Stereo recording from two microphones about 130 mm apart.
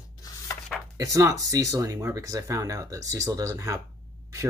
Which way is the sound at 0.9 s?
25° right (ahead or behind).